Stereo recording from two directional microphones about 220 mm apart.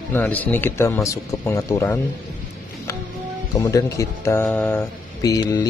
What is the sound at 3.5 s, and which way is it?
Speech, 15° left (ahead or behind).